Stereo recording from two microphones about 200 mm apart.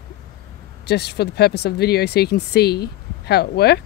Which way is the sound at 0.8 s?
55° left (ahead or behind).